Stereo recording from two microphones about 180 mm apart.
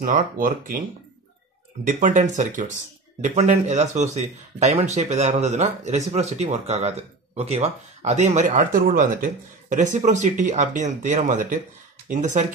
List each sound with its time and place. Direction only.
0.0 s speech: 50° right (ahead or behind)
2.0 s speech: 45° right (ahead or behind)